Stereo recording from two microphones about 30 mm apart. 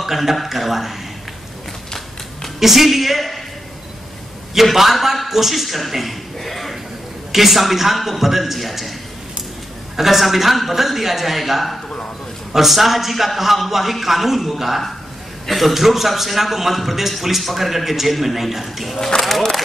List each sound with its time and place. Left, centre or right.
0.0 s a man's voice: centre
2.6 s a man's voice: centre
4.6 s a man's voice: centre
6.4 s a sound: centre
7.3 s a man's voice: centre
9.9 s a man's voice: centre
18.9 s speech: centre